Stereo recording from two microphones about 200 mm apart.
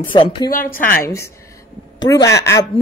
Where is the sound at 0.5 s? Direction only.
45° left (ahead or behind).